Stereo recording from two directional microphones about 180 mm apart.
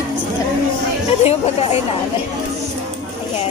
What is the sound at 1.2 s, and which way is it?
Speech, 35° left (ahead or behind).